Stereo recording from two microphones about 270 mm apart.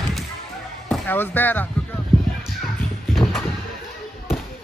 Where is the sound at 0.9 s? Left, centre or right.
Centre.